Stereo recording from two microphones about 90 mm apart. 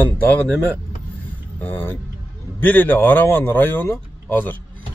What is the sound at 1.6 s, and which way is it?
Speech, 25° left (ahead or behind).